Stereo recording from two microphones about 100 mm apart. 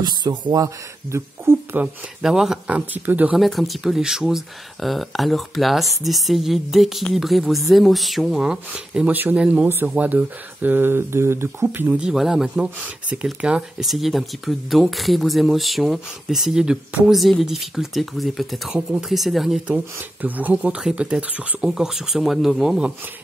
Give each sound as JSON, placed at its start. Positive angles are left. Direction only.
{"t": 0.0, "sound": "speech", "side_deg": -45}
{"t": 1.1, "sound": "speech", "side_deg": -25}
{"t": 2.2, "sound": "speech", "side_deg": -5}
{"t": 3.3, "sound": "speech", "side_deg": 0}
{"t": 19.7, "sound": "speech", "side_deg": -15}
{"t": 21.6, "sound": "speech", "side_deg": -5}